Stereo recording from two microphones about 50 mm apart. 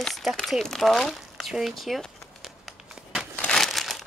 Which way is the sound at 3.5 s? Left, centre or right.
Centre.